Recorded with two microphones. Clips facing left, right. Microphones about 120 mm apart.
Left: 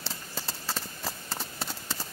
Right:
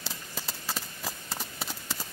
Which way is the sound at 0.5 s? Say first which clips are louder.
Left 1 dB; centre (ahead or behind).